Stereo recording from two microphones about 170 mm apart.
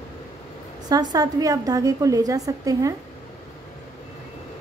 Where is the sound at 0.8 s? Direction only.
20° right (ahead or behind).